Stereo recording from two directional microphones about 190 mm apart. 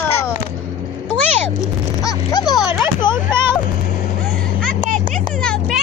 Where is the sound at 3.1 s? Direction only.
15° right (ahead or behind).